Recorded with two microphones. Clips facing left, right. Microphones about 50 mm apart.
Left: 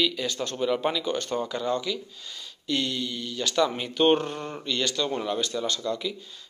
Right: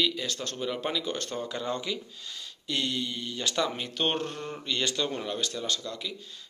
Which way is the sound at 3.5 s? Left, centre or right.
Centre.